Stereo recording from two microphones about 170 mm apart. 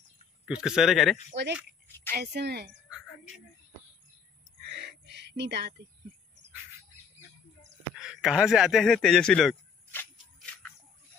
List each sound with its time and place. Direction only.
0.5 s speech: 5° right (ahead or behind)
1.3 s speech: 90° right
2.0 s a woman's voice: 75° right (ahead or behind)
4.7 s a sound: 80° right
8.0 s a man's voice: 5° right (ahead or behind)